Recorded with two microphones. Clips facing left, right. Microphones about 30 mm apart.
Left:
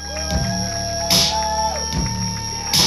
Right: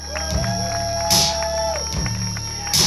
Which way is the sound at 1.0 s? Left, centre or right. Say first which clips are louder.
Left 2 dB; left.